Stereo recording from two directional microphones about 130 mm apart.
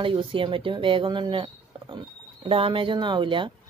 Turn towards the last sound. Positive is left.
turn(degrees=-40)  # may be behind; listen again after turning